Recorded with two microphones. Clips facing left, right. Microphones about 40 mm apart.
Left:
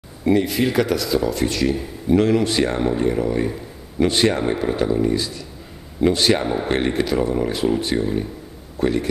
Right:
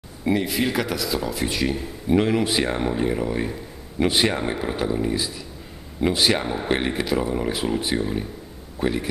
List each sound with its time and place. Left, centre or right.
0.2 s a man's voice: centre